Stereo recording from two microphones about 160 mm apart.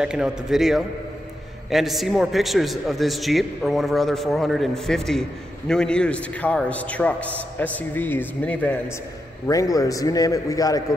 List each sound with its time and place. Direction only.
0.0 s a man's voice: 5° right (ahead or behind); by 8.7 s 10° left (ahead or behind)
9.5 s a man's voice: 20° left (ahead or behind)